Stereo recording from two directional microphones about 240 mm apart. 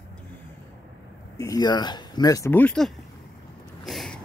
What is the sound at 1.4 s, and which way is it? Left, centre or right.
Speech, centre.